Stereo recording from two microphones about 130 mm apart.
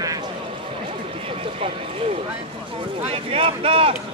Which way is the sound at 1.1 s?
50° right (ahead or behind).